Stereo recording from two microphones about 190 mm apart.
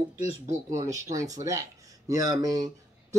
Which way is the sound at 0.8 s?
15° right (ahead or behind).